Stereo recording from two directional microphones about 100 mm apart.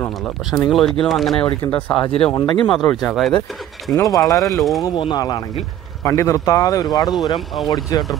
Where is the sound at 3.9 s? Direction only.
35° left (ahead or behind).